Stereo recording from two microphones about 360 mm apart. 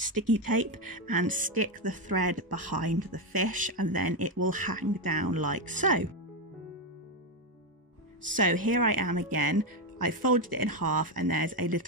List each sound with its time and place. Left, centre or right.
0.0 s speech: right
1.5 s speech: right
3.0 s speech: right
8.3 s speech: right